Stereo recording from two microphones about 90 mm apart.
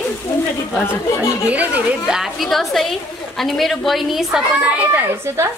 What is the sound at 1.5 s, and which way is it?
Speech, 15° right (ahead or behind).